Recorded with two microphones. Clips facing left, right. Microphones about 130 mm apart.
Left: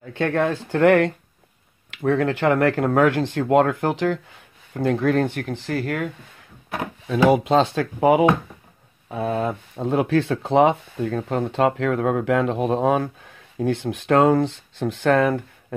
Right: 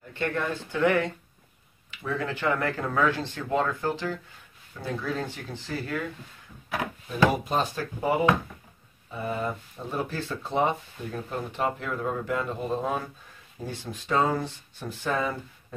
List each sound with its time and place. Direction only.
0.1 s speech: 90° left
0.7 s speech: 70° left (ahead or behind)
4.7 s speech: 60° left (ahead or behind)
7.2 s speech: 90° left; by 15.4 s 70° left (ahead or behind)